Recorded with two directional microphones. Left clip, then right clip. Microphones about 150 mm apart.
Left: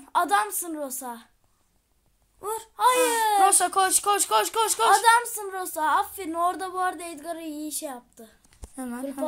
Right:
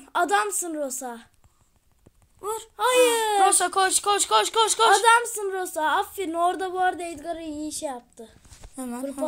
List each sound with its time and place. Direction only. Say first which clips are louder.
0.0 s a woman's voice: even; 30° right (ahead or behind)
2.4 s speech: right 1 dB; 30° left (ahead or behind)
2.7 s speech: right 1 dB; 30° right (ahead or behind)
3.3 s speech: left 1 dB; centre (ahead or behind)
4.9 s a woman's voice: right 1 dB; 35° right (ahead or behind)
8.7 s speech: right 1 dB; 10° right (ahead or behind)